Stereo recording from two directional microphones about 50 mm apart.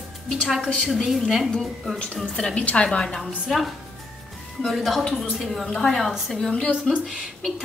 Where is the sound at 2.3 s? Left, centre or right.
Centre.